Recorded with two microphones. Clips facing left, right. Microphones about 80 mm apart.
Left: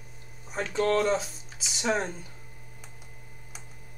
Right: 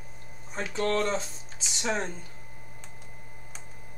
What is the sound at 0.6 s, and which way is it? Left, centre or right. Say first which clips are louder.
Speech: left 3 dB; centre.